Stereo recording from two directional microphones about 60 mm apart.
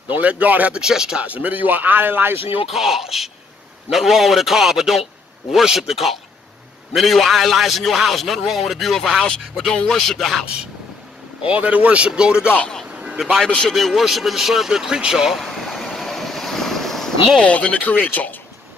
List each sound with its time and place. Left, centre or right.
0.1 s speech: right
0.7 s speech: centre
1.2 s a man's voice: right
2.7 s a man's voice: centre
11.4 s speech: right
12.9 s a sound: right
13.5 s a man's voice: centre
15.4 s vehicle: centre
17.4 s speech: left